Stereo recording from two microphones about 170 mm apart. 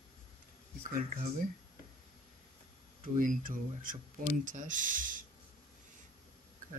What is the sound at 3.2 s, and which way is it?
Speech, 55° right (ahead or behind).